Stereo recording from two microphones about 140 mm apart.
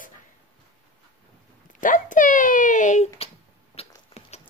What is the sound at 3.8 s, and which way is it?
Rodents, 50° left (ahead or behind).